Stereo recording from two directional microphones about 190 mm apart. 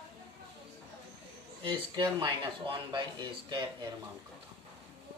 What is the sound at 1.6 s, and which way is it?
Speech, 25° right (ahead or behind).